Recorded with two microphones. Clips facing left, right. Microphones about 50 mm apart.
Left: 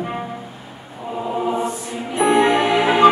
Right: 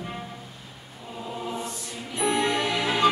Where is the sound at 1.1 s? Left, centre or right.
Left.